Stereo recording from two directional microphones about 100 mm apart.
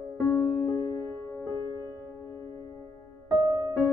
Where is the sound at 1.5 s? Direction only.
35° left (ahead or behind).